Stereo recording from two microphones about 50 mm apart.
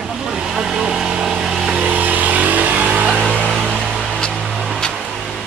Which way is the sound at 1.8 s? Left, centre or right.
Right.